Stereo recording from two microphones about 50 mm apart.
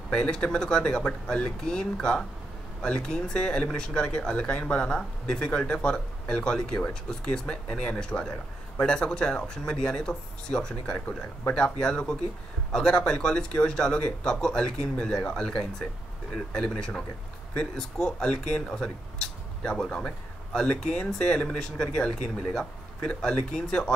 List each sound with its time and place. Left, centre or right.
0.1 s speech: centre